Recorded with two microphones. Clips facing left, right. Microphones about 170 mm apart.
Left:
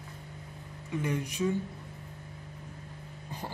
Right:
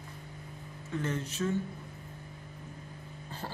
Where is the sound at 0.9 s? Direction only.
15° left (ahead or behind).